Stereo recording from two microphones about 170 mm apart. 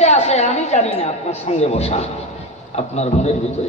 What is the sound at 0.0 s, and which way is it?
A man's voice, 40° left (ahead or behind).